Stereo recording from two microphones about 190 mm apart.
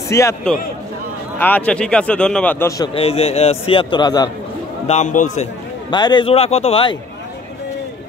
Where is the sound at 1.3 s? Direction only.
10° left (ahead or behind).